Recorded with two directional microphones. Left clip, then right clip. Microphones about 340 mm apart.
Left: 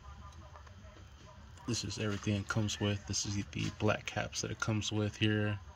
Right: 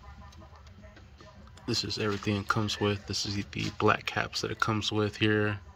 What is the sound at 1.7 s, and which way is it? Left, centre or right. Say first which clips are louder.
Speech: right 8 dB; centre.